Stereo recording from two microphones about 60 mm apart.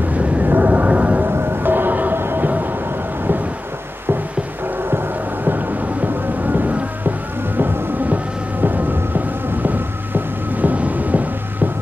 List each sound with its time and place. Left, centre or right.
0.1 s a sound: right
1.2 s music: right
4.8 s music: right